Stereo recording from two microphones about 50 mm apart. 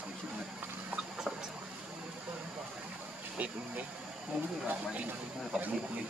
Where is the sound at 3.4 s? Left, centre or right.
Right.